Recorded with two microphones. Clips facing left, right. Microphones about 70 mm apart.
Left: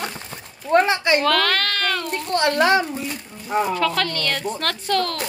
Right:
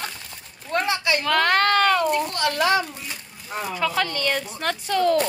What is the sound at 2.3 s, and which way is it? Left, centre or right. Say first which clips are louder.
Speech: left 4 dB; left.